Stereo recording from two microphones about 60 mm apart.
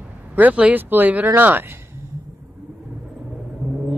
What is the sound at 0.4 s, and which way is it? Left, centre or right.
Speech, right.